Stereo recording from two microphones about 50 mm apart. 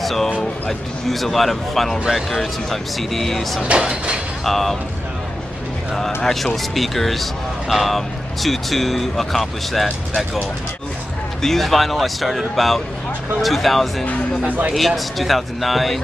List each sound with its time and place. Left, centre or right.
0.0 s a sound: centre
0.4 s speech: centre
3.6 s speech: centre
4.5 s speech: centre
6.2 s speech: centre
11.4 s speech: centre